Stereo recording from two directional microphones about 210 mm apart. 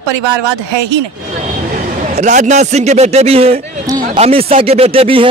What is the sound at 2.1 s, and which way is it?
A man's voice, 35° right (ahead or behind).